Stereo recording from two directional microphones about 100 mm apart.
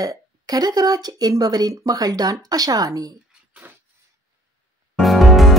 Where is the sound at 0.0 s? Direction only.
40° right (ahead or behind).